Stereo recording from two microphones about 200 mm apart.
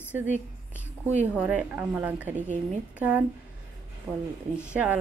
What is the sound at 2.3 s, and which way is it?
Speech, 35° right (ahead or behind).